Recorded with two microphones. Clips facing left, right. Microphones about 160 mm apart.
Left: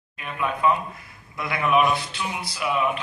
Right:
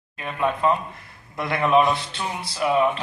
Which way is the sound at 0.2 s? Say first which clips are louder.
Right 2 dB; 35° right (ahead or behind).